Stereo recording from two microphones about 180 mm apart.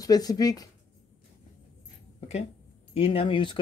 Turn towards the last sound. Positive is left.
turn(degrees=30)  # may be behind; listen again after turning